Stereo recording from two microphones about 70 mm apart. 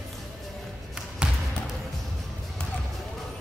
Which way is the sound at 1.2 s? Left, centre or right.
Centre.